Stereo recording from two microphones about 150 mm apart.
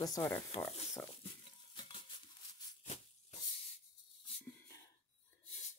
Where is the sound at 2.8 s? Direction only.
50° left (ahead or behind).